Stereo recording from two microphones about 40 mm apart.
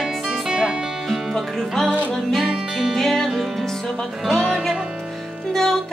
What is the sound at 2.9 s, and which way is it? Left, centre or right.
Music, centre.